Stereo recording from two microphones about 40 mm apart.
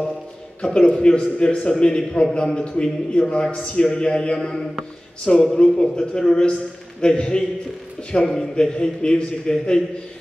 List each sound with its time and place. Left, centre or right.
0.6 s a man's voice: left